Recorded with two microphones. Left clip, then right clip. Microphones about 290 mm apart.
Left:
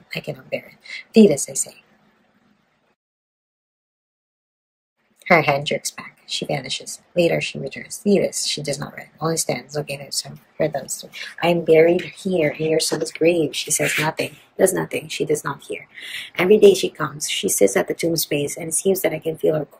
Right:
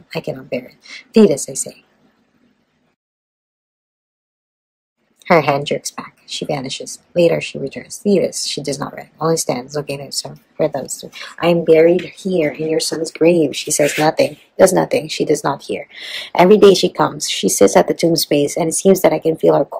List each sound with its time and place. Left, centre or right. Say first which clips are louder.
0.1 s speech: right 5 dB; centre
5.2 s speech: right 3 dB; centre